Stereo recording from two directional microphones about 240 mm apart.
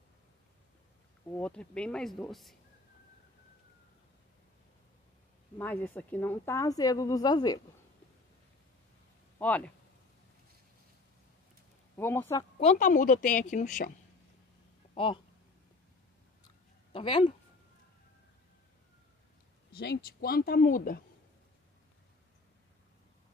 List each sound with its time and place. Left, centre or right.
1.4 s speech: centre
5.6 s speech: centre
9.4 s speech: centre
12.0 s speech: centre
12.5 s a woman's voice: left
15.0 s speech: left
16.9 s speech: left
19.7 s a woman's voice: left